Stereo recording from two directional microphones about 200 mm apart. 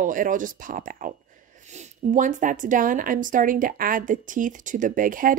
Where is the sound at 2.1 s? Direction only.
40° right (ahead or behind).